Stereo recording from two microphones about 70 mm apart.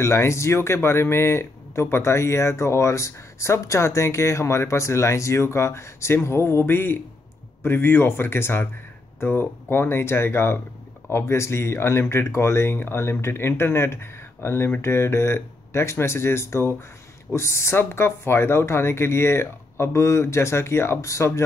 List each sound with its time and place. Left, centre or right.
0.0 s speech: left